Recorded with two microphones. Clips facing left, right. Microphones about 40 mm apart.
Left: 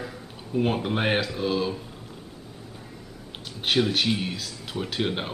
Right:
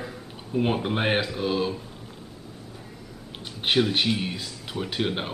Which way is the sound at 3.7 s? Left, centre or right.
Centre.